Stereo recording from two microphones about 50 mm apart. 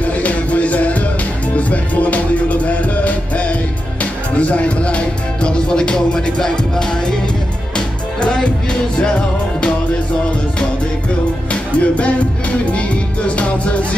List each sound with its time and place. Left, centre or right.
0.0 s music: left
11.5 s music: left